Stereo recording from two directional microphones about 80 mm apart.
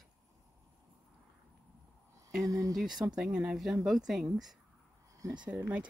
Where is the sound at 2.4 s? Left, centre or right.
Right.